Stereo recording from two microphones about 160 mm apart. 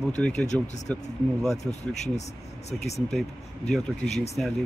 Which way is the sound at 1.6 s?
45° left (ahead or behind).